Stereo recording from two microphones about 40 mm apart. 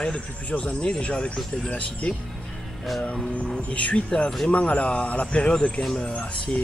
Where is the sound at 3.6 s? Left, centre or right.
Left.